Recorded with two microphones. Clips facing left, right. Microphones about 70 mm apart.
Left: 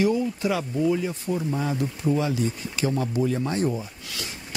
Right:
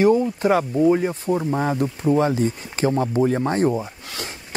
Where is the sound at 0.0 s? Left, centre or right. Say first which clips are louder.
Right 6 dB; right.